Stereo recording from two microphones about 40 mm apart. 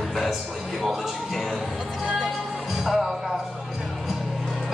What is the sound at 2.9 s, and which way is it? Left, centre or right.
Music, centre.